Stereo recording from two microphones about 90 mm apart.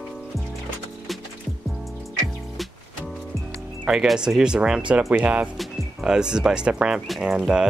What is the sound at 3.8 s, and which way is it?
Speech, 10° right (ahead or behind).